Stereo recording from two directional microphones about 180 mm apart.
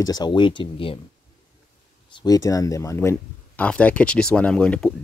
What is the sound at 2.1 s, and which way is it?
Speech, 20° left (ahead or behind).